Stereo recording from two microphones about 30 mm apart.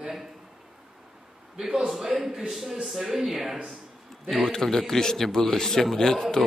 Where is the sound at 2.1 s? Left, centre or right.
Right.